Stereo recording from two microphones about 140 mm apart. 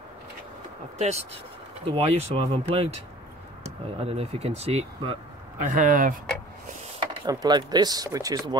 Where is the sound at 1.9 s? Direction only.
45° right (ahead or behind).